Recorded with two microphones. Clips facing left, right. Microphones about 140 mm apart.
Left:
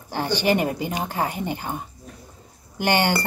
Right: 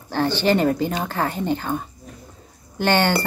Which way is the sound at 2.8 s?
15° left (ahead or behind).